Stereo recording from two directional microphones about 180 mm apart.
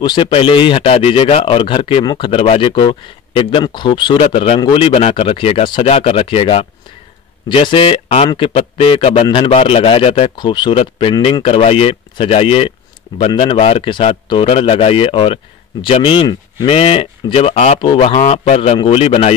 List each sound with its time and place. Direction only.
0.0 s speech: 25° left (ahead or behind)